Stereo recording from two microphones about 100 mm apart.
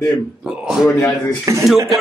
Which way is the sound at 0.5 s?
5° right (ahead or behind).